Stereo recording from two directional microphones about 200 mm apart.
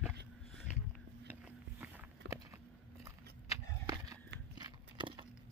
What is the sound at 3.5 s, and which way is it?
Skateboard, 15° right (ahead or behind).